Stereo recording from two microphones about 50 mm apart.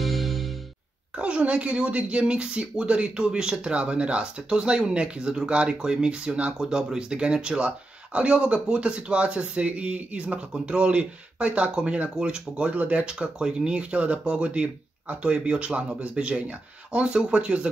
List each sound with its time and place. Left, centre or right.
0.0 s music: centre
1.1 s speech: right